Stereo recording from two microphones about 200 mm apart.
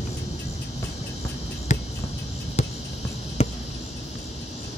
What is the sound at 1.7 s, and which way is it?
Cricket, 35° left (ahead or behind).